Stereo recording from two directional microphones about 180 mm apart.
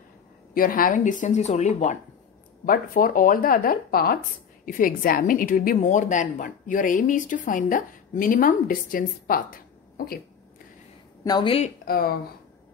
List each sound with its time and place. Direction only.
0.6 s a woman's voice: 50° left (ahead or behind)
2.6 s a woman's voice: 50° left (ahead or behind)
11.2 s speech: 25° left (ahead or behind)
11.8 s speech: 55° left (ahead or behind)